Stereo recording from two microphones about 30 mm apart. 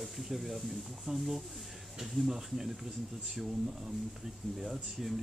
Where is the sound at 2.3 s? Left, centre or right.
Centre.